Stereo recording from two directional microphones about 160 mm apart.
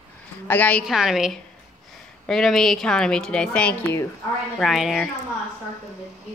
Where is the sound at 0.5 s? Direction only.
10° left (ahead or behind).